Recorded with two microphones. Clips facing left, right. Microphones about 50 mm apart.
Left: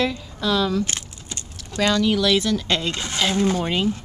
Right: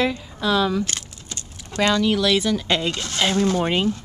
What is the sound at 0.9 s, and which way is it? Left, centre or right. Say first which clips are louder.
Keys jangling: left 1 dB; centre.